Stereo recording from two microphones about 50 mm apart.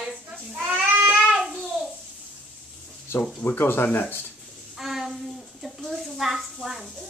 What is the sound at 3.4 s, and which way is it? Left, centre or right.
Speech, left.